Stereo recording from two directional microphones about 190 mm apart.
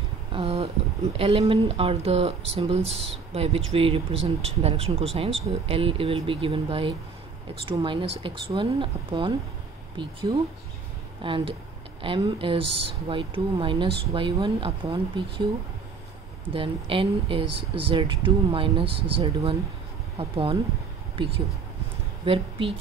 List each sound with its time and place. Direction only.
0.3 s speech: 30° right (ahead or behind)
11.2 s speech: 25° right (ahead or behind)
16.5 s speech: 30° right (ahead or behind)
22.2 s speech: 30° right (ahead or behind)